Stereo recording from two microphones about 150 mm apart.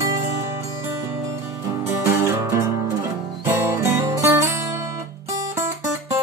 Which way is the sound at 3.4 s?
15° right (ahead or behind).